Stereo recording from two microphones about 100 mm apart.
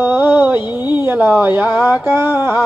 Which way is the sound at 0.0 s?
20° right (ahead or behind).